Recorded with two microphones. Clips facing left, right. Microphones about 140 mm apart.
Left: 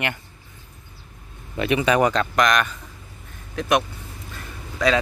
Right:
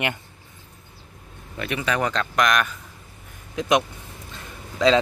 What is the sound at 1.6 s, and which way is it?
Speech, 20° left (ahead or behind).